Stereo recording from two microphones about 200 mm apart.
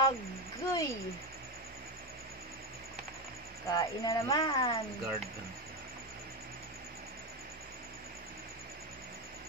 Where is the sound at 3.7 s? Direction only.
20° left (ahead or behind).